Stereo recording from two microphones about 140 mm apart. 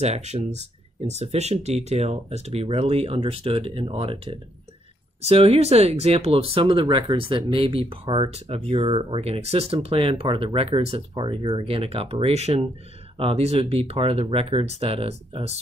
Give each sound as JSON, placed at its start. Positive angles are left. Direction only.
{"t": 0.0, "sound": "speech", "side_deg": -50}